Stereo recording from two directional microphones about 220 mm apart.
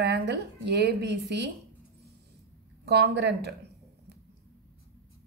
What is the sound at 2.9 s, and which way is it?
Speech, 50° right (ahead or behind).